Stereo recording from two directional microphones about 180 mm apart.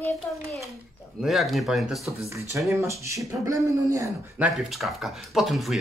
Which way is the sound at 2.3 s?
15° right (ahead or behind).